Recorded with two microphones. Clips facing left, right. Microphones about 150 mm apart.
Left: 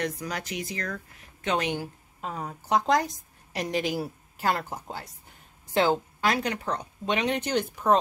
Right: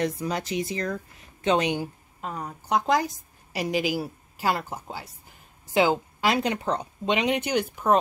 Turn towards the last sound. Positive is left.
turn(degrees=-10)  # may be behind; listen again after turning